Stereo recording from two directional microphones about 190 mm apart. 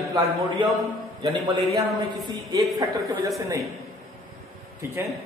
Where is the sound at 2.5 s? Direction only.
15° right (ahead or behind).